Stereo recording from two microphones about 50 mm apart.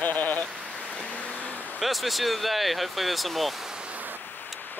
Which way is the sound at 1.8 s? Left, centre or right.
Centre.